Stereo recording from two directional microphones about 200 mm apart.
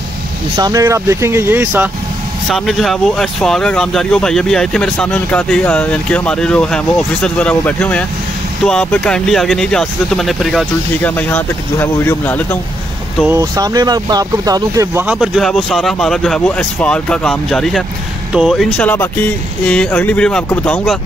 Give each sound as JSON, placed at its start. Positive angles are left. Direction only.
{"t": 0.6, "sound": "speech", "side_deg": -15}
{"t": 2.5, "sound": "speech", "side_deg": 0}
{"t": 13.3, "sound": "speech", "side_deg": -15}
{"t": 15.1, "sound": "speech", "side_deg": 0}